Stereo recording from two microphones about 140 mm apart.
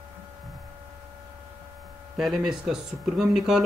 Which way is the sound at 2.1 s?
5° right (ahead or behind).